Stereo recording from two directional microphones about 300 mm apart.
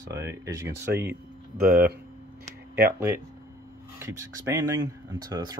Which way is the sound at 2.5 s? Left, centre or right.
Right.